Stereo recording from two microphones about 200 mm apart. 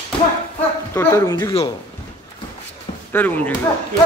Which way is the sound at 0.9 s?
15° left (ahead or behind).